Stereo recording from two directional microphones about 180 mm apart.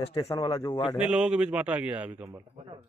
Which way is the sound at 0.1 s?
25° left (ahead or behind).